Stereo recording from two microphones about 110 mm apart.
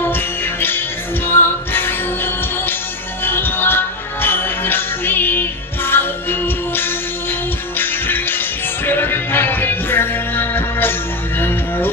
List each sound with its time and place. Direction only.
0.0 s music: 20° left (ahead or behind)